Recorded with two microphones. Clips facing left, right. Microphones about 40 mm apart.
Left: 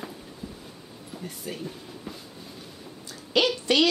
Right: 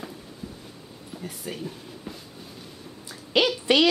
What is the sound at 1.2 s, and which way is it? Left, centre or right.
Train, centre.